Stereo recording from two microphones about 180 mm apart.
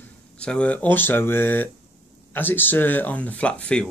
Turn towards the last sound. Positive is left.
turn(degrees=5)  # may be behind; listen again after turning